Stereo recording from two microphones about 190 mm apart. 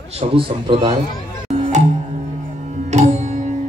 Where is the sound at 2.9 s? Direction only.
35° right (ahead or behind).